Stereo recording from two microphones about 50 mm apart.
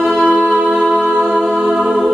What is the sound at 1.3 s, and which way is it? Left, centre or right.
Music, centre.